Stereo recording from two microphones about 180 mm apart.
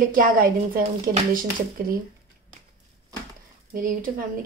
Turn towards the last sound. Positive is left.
turn(degrees=-50)  # may be behind; listen again after turning